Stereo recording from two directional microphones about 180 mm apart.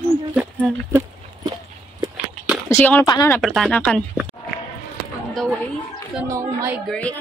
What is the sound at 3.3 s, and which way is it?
Speech, centre (ahead or behind).